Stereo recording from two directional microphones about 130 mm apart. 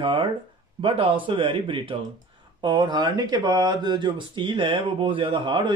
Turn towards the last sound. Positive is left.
turn(degrees=-40)  # may be behind; listen again after turning